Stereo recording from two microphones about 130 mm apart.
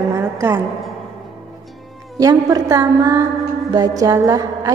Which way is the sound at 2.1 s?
30° right (ahead or behind).